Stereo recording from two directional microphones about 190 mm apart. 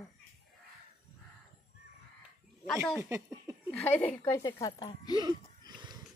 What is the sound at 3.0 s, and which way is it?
Speech, 15° right (ahead or behind).